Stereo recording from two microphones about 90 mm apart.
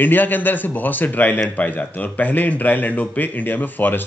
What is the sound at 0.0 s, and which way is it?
Speech, 20° left (ahead or behind).